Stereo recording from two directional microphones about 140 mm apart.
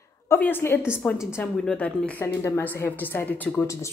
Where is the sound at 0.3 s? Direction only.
15° left (ahead or behind).